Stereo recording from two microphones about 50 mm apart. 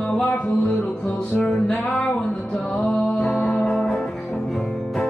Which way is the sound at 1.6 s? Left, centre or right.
Left.